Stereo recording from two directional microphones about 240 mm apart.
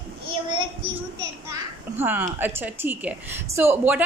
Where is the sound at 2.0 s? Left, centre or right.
Centre.